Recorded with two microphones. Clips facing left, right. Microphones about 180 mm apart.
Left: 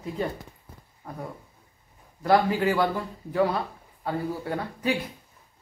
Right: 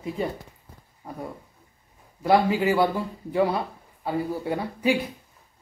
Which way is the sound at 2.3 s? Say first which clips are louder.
Right 1 dB; 10° right (ahead or behind).